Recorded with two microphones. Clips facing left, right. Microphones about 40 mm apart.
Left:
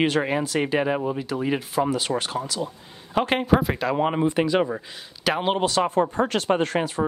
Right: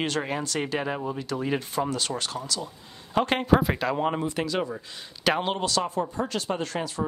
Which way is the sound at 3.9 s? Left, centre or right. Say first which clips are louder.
Left 5 dB; centre.